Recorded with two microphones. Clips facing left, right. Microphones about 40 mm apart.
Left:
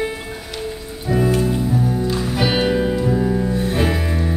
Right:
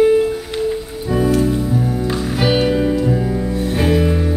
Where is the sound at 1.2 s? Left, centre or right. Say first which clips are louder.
Right 4 dB; centre.